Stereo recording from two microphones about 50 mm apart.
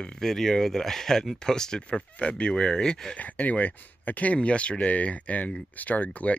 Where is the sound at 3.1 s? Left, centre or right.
Left.